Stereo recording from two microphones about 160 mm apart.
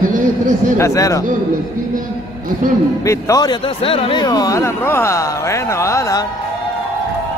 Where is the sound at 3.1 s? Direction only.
20° left (ahead or behind).